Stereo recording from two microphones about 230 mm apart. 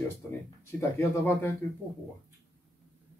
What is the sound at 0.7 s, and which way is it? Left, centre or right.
Speech, centre.